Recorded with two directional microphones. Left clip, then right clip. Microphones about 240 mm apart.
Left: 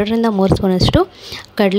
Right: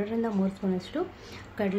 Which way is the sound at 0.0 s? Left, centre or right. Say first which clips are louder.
Left 14 dB; left.